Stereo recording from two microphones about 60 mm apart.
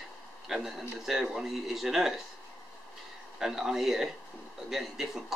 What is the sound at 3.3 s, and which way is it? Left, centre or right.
Speech, centre.